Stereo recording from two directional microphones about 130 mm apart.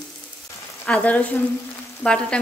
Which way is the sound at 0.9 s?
10° left (ahead or behind).